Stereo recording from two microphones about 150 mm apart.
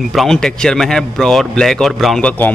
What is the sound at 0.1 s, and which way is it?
Speech, centre (ahead or behind).